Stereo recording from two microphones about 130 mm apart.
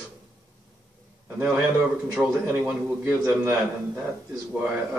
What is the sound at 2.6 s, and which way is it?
Speech, 10° right (ahead or behind).